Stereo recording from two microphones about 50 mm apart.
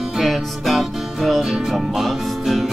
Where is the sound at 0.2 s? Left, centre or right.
Centre.